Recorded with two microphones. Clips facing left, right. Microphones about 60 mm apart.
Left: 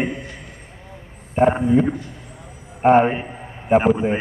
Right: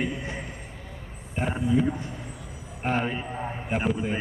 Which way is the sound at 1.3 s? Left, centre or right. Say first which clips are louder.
Left 9 dB; left.